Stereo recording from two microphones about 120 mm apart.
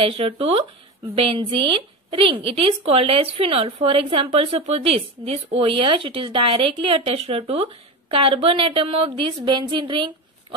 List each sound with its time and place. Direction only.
0.0 s a woman's voice: 55° right (ahead or behind)